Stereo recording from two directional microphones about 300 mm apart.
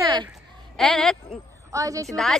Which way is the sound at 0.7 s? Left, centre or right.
Centre.